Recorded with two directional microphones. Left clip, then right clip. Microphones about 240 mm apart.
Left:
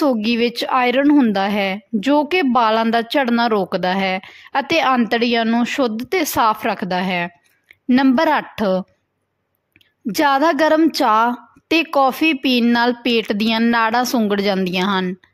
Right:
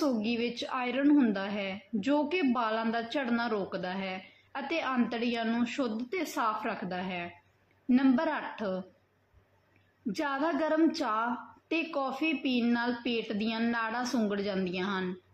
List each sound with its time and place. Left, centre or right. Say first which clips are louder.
0.0 s a woman's voice: left 14 dB; left
10.1 s a woman's voice: left 16 dB; left